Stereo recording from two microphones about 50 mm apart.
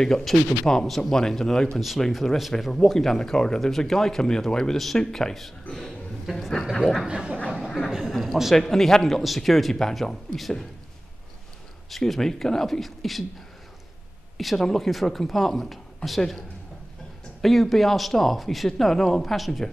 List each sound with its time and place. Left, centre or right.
0.0 s speech: centre
1.8 s speech: centre
7.1 s speech: centre
7.4 s speech: centre
11.9 s speech: centre
14.3 s speech: centre